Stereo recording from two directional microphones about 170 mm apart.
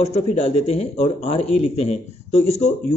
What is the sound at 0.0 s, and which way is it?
Speech, 40° left (ahead or behind).